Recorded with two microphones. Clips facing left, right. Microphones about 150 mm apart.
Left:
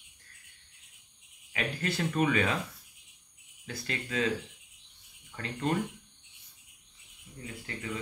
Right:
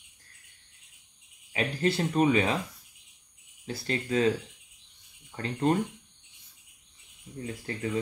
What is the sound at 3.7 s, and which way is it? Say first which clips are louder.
Speech: right 7 dB; 35° right (ahead or behind).